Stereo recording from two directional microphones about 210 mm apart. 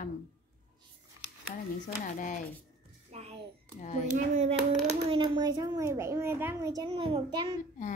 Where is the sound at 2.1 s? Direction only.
40° left (ahead or behind).